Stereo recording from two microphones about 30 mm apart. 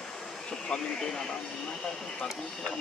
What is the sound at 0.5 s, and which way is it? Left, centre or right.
Speech, left.